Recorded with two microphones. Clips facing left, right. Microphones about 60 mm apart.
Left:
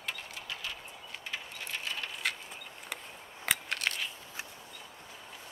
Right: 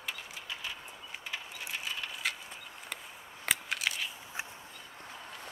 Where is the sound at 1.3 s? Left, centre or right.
Centre.